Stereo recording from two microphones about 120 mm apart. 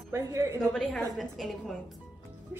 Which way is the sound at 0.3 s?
25° right (ahead or behind).